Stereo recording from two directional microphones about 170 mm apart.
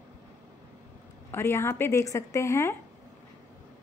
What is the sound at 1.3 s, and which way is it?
A woman's voice, 15° left (ahead or behind).